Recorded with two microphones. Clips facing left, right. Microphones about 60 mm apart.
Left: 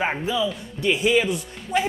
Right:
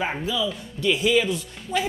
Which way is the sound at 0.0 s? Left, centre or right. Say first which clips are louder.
Left 2 dB; left.